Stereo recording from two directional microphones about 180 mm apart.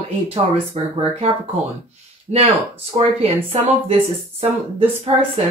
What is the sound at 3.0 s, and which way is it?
Speech, 35° right (ahead or behind).